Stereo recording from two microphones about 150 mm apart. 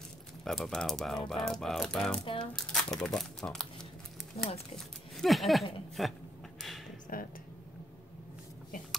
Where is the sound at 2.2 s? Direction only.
35° left (ahead or behind).